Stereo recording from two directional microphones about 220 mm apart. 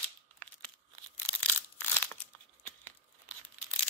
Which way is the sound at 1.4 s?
10° left (ahead or behind).